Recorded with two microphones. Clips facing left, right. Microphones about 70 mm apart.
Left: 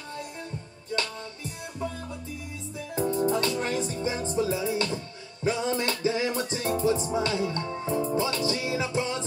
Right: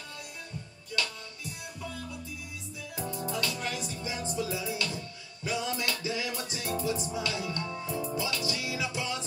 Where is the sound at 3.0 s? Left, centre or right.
Left.